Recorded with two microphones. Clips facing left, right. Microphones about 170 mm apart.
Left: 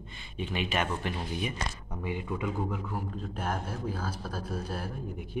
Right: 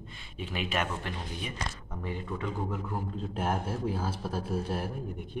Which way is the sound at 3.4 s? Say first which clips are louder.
Right 3 dB; 25° right (ahead or behind).